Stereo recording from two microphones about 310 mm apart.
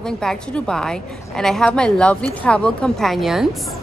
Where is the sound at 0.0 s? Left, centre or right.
Centre.